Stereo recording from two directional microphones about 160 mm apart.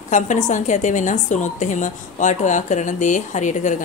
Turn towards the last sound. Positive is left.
turn(degrees=50)  # may be behind; listen again after turning